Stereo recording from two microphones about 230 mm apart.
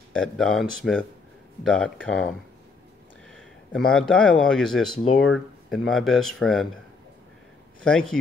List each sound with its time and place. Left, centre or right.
0.1 s speech: centre
3.7 s speech: centre
7.8 s speech: centre